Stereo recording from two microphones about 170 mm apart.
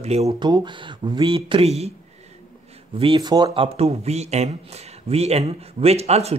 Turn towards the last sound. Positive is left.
turn(degrees=-40)  # may be behind; listen again after turning